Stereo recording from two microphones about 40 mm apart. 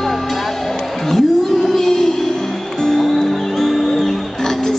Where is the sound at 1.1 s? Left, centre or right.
Centre.